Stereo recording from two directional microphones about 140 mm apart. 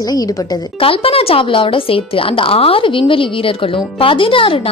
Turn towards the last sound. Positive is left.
turn(degrees=40)  # may be behind; listen again after turning